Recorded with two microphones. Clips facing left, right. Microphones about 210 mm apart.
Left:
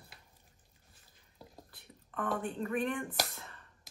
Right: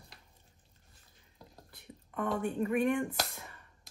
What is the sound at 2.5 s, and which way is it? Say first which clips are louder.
Speech: right 5 dB; 15° right (ahead or behind).